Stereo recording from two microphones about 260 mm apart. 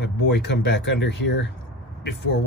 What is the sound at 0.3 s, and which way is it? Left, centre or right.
Speech, left.